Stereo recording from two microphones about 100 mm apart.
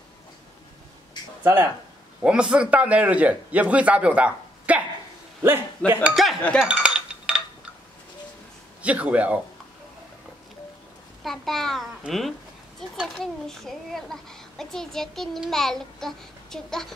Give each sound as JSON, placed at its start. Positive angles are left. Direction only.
{"t": 1.4, "sound": "speech", "side_deg": -20}
{"t": 2.2, "sound": "a man's voice", "side_deg": -10}
{"t": 5.8, "sound": "speech", "side_deg": 10}
{"t": 6.2, "sound": "chink", "side_deg": 0}
{"t": 6.6, "sound": "dishes", "side_deg": -10}
{"t": 8.8, "sound": "a man's voice", "side_deg": -15}
{"t": 11.2, "sound": "a child's voice", "side_deg": 5}